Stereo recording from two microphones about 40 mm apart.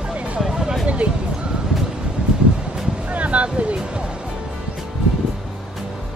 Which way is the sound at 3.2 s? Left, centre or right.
Right.